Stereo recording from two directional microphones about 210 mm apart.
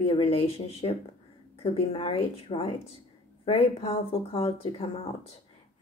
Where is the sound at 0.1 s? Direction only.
25° left (ahead or behind).